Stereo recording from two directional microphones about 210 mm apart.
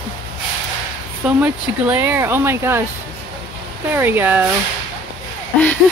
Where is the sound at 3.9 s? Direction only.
10° right (ahead or behind).